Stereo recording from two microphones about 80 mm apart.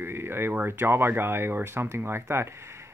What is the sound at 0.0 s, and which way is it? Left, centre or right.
Speech, right.